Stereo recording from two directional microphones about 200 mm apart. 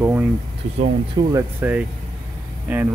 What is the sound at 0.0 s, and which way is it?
Speech, 10° right (ahead or behind).